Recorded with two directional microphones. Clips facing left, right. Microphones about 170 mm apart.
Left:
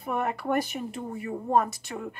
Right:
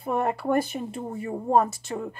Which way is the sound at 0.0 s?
30° right (ahead or behind).